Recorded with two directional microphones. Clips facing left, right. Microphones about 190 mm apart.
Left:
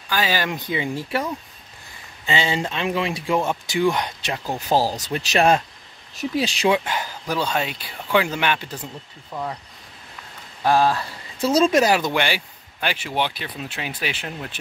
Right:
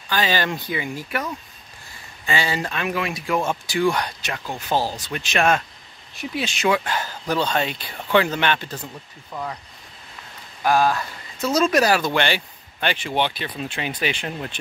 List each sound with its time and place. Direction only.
0.1 s speech: 10° left (ahead or behind)
0.7 s speech: 25° left (ahead or behind)
2.2 s speech: 20° left (ahead or behind)
4.2 s speech: 35° left (ahead or behind)
6.7 s speech: 20° left (ahead or behind)
10.6 s speech: 30° left (ahead or behind); by 14.6 s centre (ahead or behind)